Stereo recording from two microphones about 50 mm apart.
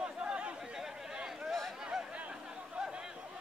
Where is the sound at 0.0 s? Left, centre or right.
Centre.